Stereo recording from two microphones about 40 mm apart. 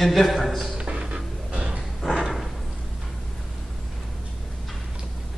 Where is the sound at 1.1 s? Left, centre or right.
Right.